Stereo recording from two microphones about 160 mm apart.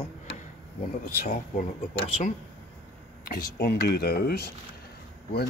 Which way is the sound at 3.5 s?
75° left (ahead or behind).